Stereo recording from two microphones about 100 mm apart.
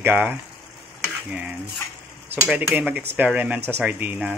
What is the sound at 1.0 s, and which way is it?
Stir, 10° right (ahead or behind).